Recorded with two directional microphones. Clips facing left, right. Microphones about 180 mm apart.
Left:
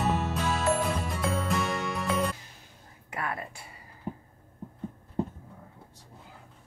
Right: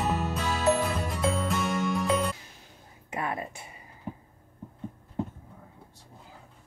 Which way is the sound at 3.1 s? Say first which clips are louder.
Right 2 dB; 20° right (ahead or behind).